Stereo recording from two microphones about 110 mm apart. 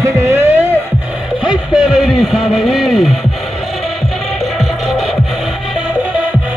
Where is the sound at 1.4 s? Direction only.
5° right (ahead or behind).